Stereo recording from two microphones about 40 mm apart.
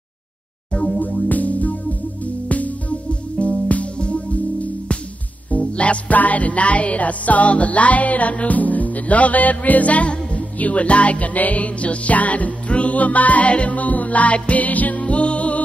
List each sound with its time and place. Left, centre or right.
0.7 s music: left
1.0 s music: left
5.6 s music: left